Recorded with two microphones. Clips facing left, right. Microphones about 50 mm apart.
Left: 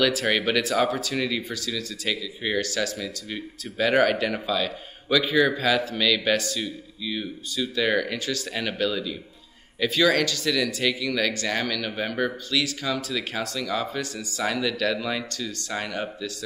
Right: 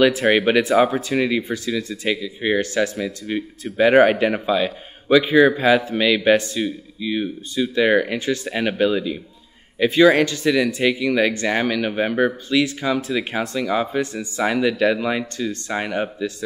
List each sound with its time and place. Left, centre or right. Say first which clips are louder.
0.0 s speech: right 7 dB; right